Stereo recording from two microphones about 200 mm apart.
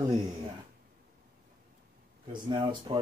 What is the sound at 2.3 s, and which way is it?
Speech, 25° right (ahead or behind).